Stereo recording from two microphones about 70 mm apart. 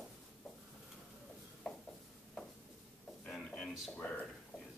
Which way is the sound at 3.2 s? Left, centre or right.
Centre.